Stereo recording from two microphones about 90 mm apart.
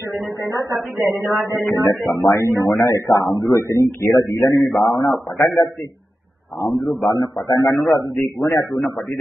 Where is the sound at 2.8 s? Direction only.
35° left (ahead or behind).